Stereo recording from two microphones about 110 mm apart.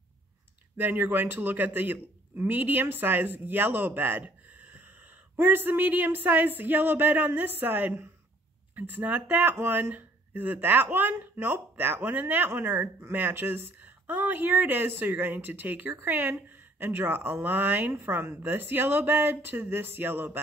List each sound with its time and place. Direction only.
0.7 s speech: 15° right (ahead or behind)